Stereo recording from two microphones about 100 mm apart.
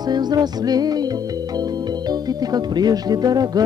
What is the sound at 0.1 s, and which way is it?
Music, 45° right (ahead or behind).